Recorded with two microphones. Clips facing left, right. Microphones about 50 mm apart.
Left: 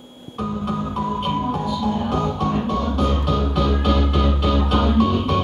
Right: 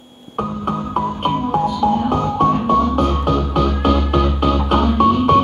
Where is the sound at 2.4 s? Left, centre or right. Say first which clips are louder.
Right 7 dB; right.